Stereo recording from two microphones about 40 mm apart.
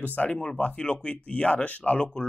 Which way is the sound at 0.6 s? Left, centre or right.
Left.